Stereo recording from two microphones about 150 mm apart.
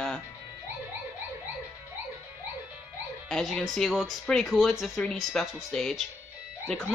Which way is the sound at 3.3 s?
5° left (ahead or behind).